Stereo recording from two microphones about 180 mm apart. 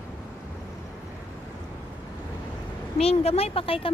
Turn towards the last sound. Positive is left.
turn(degrees=30)  # may be behind; listen again after turning